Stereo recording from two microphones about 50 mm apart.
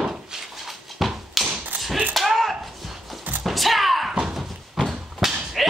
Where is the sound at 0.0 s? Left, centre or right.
Centre.